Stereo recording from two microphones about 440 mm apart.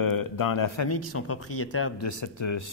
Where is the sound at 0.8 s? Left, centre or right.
Left.